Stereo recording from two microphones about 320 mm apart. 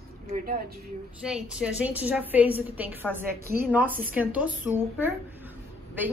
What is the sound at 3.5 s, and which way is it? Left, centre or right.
Speech, right.